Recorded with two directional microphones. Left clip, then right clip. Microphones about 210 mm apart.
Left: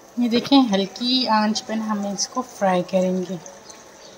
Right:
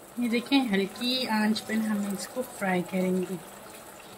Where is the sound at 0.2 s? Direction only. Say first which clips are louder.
Left 9 dB; 15° left (ahead or behind).